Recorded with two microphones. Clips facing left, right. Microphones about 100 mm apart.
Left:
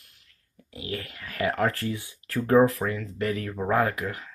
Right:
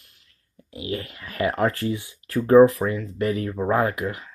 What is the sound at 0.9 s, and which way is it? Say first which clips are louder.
Speech: right 4 dB; 25° right (ahead or behind).